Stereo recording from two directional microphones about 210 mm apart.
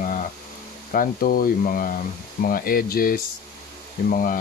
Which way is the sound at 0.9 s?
45° left (ahead or behind).